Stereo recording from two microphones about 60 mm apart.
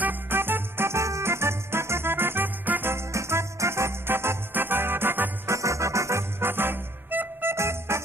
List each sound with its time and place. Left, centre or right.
0.0 s music: right
2.9 s music: right
5.5 s music: right
7.5 s music: right